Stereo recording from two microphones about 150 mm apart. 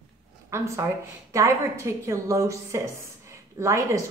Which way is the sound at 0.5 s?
20° right (ahead or behind).